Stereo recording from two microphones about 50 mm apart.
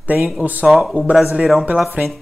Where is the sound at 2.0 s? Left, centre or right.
Right.